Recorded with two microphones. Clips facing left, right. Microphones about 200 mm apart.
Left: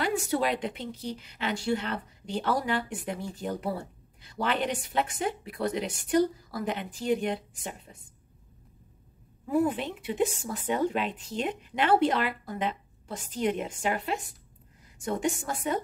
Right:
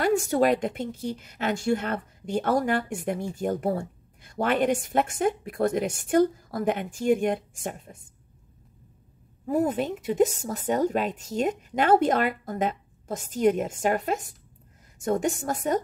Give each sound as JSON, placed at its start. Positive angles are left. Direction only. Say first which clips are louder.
{"t": 0.0, "sound": "a woman's voice", "louder": "right 6 dB", "side_deg": -45}
{"t": 9.5, "sound": "a woman's voice", "louder": "right 2 dB", "side_deg": -40}